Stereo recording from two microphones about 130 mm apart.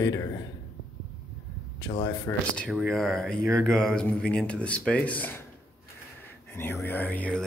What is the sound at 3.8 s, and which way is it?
Speech, 5° left (ahead or behind).